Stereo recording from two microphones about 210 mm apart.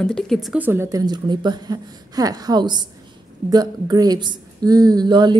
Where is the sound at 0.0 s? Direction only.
Centre (ahead or behind).